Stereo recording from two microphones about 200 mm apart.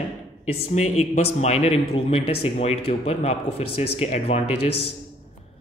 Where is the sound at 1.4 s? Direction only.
35° left (ahead or behind).